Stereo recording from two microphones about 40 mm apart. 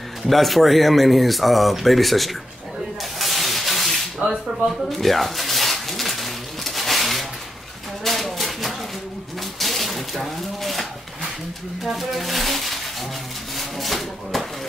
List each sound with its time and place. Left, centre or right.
0.3 s speech: centre
3.2 s rub: centre
4.2 s speech: right
4.8 s a sound: centre
11.8 s music: centre
13.6 s a sound: centre